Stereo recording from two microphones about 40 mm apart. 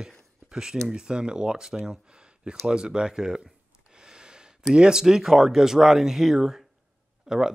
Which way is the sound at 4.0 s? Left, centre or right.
Centre.